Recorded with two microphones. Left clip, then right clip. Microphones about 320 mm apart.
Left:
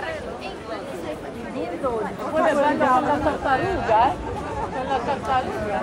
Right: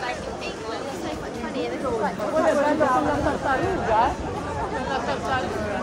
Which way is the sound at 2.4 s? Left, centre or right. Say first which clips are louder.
Left 1 dB; left.